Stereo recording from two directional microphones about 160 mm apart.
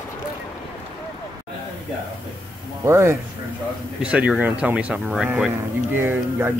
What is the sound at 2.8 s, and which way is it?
Speech, 15° right (ahead or behind).